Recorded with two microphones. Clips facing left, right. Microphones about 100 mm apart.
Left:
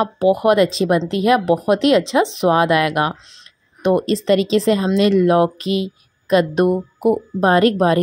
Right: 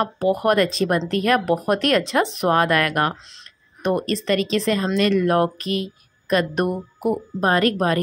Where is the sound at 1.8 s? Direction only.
10° left (ahead or behind); by 5.2 s 30° left (ahead or behind).